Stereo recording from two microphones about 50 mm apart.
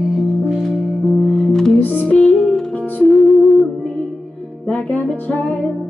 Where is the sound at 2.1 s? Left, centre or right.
Centre.